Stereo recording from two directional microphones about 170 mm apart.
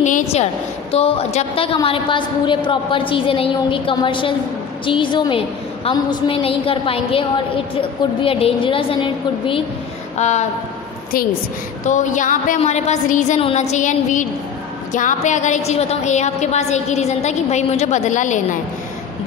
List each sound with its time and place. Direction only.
0.0 s a sound: 45° left (ahead or behind)
0.9 s a woman's voice: 35° left (ahead or behind)
11.8 s a woman's voice: 45° left (ahead or behind)